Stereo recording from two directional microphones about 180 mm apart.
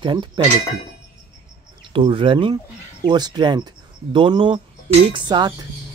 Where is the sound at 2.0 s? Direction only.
30° right (ahead or behind).